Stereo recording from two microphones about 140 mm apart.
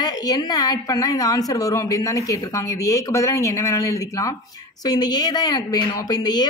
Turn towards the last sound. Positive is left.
turn(degrees=30)  # may be behind; listen again after turning